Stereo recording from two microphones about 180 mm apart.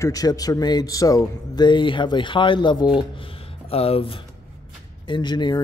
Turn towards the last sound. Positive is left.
turn(degrees=25)  # may be behind; listen again after turning